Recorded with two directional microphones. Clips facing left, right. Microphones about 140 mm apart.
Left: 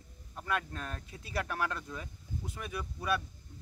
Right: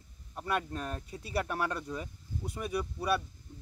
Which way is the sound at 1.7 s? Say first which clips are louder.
Right 4 dB; 10° right (ahead or behind).